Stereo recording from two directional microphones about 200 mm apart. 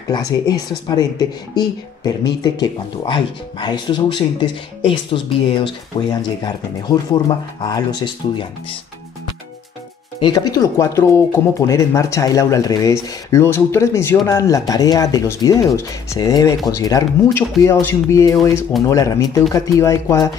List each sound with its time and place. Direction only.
0.1 s speech: 20° left (ahead or behind)
10.2 s speech: 20° left (ahead or behind)